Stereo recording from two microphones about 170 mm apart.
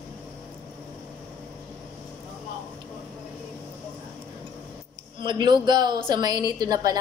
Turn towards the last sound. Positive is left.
turn(degrees=-20)  # may be behind; listen again after turning